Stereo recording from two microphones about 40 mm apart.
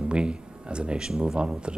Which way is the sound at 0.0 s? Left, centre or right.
Right.